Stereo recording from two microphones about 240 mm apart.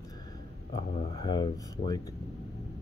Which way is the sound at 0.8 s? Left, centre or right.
Centre.